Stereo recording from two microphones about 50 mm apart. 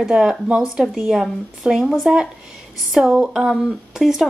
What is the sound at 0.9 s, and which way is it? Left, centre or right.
Speech, centre.